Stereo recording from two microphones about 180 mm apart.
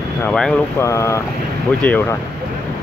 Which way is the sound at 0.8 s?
15° left (ahead or behind).